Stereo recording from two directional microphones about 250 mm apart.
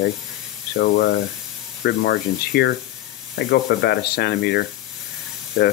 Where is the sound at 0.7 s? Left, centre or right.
Left.